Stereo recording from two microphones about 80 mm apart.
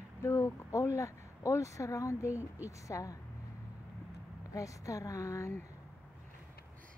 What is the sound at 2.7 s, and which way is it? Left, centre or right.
Speech, left.